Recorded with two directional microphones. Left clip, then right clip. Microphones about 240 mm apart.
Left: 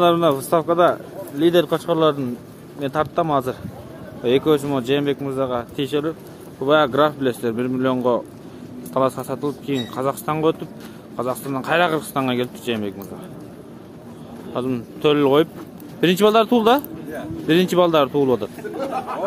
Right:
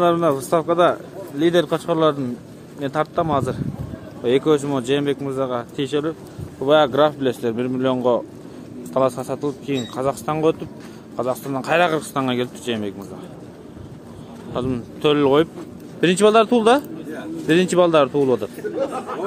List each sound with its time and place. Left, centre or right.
0.0 s speech: centre
14.5 s speech: centre
18.9 s chatter: left